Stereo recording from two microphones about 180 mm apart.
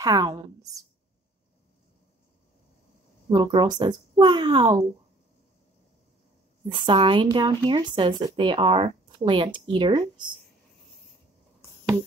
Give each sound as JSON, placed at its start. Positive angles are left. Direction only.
{"t": 0.0, "sound": "a woman's voice", "side_deg": -20}
{"t": 3.3, "sound": "a woman's voice", "side_deg": -25}
{"t": 6.7, "sound": "a woman's voice", "side_deg": -25}